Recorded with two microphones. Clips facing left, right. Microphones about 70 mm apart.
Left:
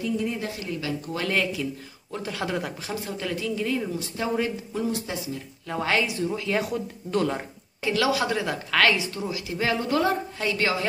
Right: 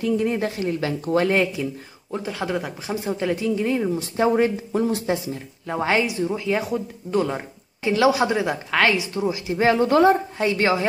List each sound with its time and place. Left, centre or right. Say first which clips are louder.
0.0 s speech: right 6 dB; right
1.2 s a woman's voice: right 5 dB; right
2.1 s speech: right 3 dB; centre
2.9 s a woman's voice: right 9 dB; right
5.7 s a woman's voice: right 4 dB; right
7.8 s a woman's voice: right 5 dB; right
10.3 s a woman's voice: right 5 dB; right